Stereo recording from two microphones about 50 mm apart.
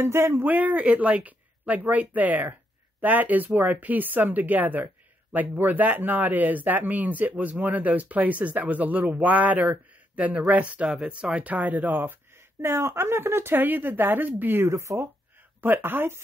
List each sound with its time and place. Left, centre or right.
0.0 s speech: right
0.5 s speech: right
14.7 s speech: right
15.6 s speech: right